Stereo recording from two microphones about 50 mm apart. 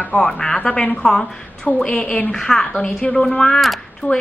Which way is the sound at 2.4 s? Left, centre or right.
Centre.